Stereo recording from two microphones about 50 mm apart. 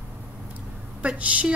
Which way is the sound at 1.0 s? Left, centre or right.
Right.